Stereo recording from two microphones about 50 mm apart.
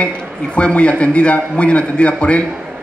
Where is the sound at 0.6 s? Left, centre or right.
Left.